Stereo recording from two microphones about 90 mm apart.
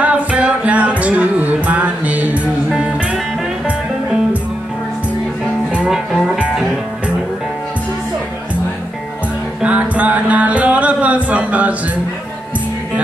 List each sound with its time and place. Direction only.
0.0 s music: 15° right (ahead or behind)
5.9 s music: 10° right (ahead or behind)
9.6 s music: 15° right (ahead or behind)